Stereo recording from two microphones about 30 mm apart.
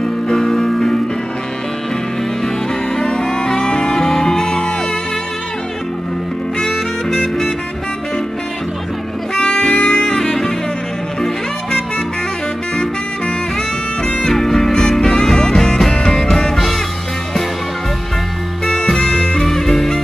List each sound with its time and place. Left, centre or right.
0.0 s music: centre
3.0 s music: left
6.6 s music: left
9.4 s saxophone: left
14.0 s music: centre
18.7 s music: centre
19.4 s music: centre